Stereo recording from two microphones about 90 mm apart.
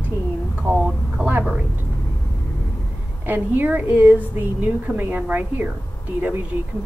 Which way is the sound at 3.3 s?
20° right (ahead or behind).